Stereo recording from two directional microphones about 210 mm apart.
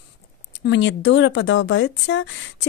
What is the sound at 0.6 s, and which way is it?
Speech, 60° left (ahead or behind).